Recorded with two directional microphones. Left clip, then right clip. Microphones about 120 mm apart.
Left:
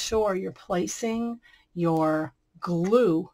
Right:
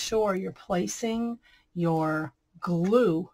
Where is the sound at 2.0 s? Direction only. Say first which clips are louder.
Left 4 dB; 45° left (ahead or behind).